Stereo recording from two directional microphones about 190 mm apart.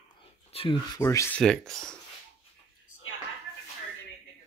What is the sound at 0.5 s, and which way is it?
Speech, 25° left (ahead or behind).